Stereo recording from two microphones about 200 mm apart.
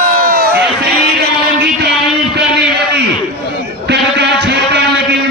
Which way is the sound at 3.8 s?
55° right (ahead or behind).